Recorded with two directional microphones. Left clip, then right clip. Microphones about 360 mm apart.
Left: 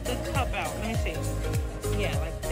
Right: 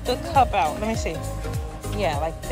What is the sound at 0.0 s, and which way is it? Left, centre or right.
Speech, centre.